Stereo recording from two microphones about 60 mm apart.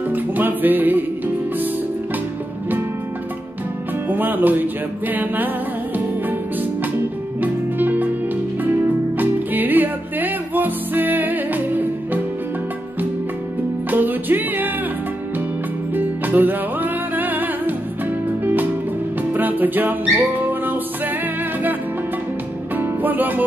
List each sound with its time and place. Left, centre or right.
0.1 s music: right
4.1 s music: right
9.2 s music: right
13.8 s music: right
15.9 s music: right
22.8 s music: right